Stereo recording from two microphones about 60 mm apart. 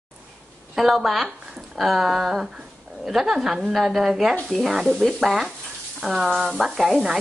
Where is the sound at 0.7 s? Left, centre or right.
Centre.